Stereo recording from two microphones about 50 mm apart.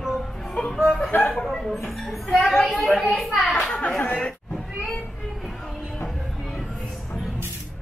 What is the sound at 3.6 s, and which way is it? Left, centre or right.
Speech, left.